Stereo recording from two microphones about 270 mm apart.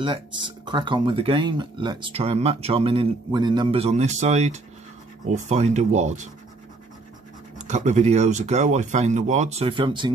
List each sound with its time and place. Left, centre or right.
0.0 s speech: centre
7.5 s speech: right